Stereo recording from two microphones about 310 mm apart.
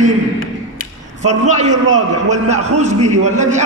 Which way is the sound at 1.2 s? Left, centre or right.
Right.